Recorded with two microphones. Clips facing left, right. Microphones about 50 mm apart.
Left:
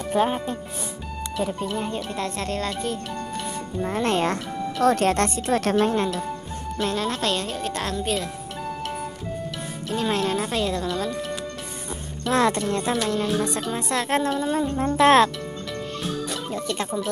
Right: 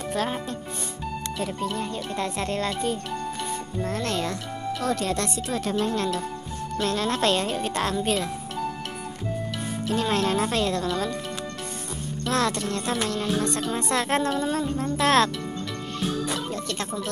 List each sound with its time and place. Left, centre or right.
0.1 s speech: centre
2.0 s speech: centre
3.8 s speech: left
4.8 s speech: left
5.6 s speech: left
6.8 s speech: centre
7.2 s speech: centre
9.8 s speech: centre
12.3 s speech: centre
13.1 s speech: centre
16.0 s music: centre
16.5 s speech: centre